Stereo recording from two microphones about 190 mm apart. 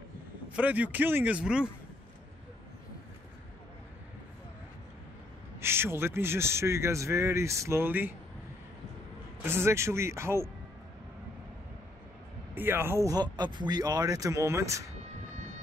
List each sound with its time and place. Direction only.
0.6 s a man's voice: 10° right (ahead or behind)
5.6 s a man's voice: 10° right (ahead or behind)
9.4 s a man's voice: 10° right (ahead or behind)
12.5 s a man's voice: 10° right (ahead or behind)